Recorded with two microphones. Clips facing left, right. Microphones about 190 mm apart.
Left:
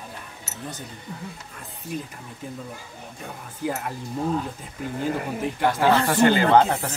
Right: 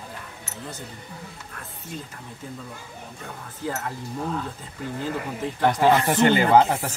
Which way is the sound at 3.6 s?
15° left (ahead or behind).